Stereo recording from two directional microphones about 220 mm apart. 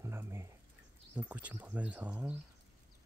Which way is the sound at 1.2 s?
5° right (ahead or behind).